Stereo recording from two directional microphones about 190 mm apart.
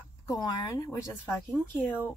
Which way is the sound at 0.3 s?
20° left (ahead or behind).